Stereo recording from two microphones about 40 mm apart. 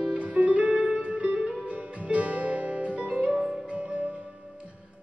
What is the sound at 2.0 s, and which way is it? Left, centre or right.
Music, right.